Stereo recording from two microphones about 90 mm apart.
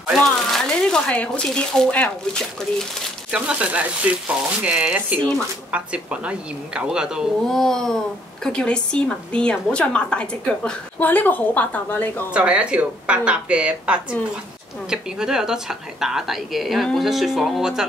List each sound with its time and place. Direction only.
0.2 s speech: 5° left (ahead or behind)
3.3 s speech: 10° right (ahead or behind)
7.4 s speech: 5° left (ahead or behind)
11.0 s a woman's voice: 20° left (ahead or behind)
12.4 s speech: 15° right (ahead or behind)